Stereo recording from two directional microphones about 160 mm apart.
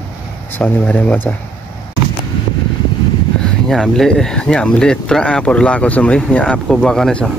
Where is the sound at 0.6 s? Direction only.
10° left (ahead or behind).